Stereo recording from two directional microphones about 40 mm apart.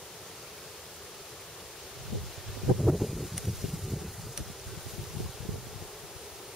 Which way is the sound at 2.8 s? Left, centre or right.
Centre.